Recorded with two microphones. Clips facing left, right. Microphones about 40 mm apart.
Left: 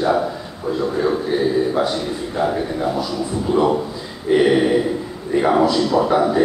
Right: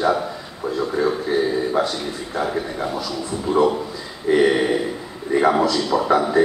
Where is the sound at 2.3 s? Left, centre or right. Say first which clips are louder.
Left 3 dB; centre.